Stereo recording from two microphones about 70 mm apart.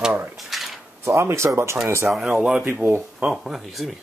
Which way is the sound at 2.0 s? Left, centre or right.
Centre.